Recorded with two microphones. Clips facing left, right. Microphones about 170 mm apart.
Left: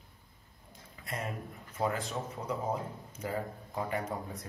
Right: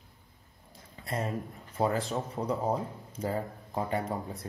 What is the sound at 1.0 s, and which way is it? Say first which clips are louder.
Speech: right 5 dB; 30° right (ahead or behind).